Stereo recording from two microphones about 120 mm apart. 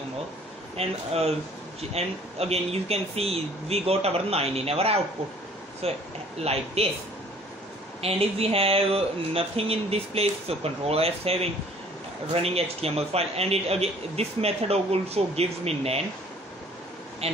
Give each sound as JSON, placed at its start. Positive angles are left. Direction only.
{"t": 0.7, "sound": "a man's voice", "side_deg": -55}
{"t": 8.0, "sound": "a man's voice", "side_deg": -55}
{"t": 12.4, "sound": "a man's voice", "side_deg": -55}
{"t": 17.2, "sound": "a man's voice", "side_deg": -55}